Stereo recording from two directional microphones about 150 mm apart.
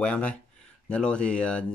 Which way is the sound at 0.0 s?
10° left (ahead or behind).